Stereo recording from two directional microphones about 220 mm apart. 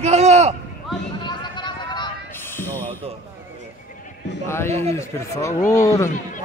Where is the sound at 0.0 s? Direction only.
30° right (ahead or behind).